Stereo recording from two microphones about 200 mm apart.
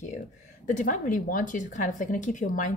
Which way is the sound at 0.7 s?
40° left (ahead or behind).